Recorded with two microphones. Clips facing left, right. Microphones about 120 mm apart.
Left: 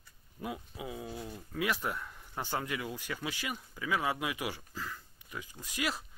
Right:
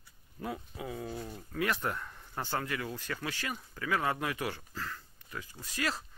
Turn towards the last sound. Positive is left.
turn(degrees=15)  # may be behind; listen again after turning